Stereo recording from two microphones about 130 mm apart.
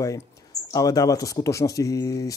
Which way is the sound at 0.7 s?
25° left (ahead or behind).